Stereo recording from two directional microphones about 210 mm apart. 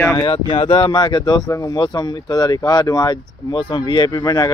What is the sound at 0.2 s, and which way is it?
Speech, 25° left (ahead or behind).